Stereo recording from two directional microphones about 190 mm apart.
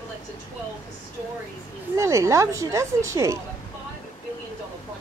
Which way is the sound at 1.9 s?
15° right (ahead or behind).